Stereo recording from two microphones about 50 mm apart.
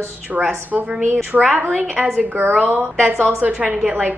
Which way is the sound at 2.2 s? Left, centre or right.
Right.